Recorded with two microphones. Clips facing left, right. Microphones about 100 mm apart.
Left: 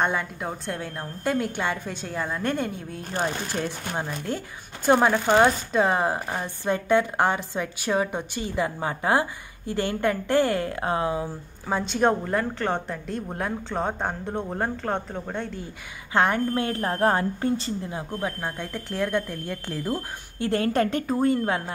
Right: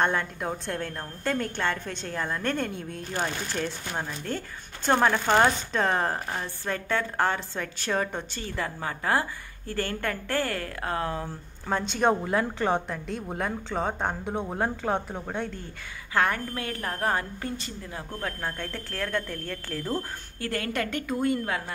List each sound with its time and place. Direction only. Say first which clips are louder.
0.0 s a woman's voice: even; 5° left (ahead or behind)
11.6 s a woman's voice: left 2 dB; centre (ahead or behind)
16.1 s a woman's voice: left 4 dB; 25° left (ahead or behind)
17.9 s a woman's voice: left 4 dB; 15° left (ahead or behind)
20.3 s a woman's voice: left 7 dB; 25° left (ahead or behind)